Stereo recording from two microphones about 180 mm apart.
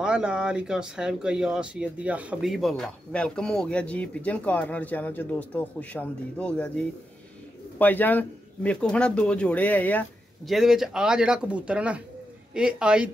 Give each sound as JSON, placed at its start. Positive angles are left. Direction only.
{"t": 0.0, "sound": "speech", "side_deg": -5}
{"t": 7.8, "sound": "speech", "side_deg": 10}